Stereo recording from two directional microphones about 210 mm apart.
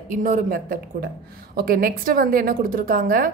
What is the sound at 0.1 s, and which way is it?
A woman's voice, 40° right (ahead or behind).